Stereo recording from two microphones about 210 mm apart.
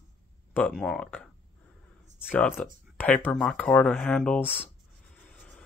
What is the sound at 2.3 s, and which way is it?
Speech, 10° left (ahead or behind).